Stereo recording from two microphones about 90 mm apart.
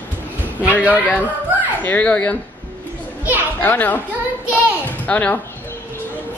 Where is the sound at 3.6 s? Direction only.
20° left (ahead or behind).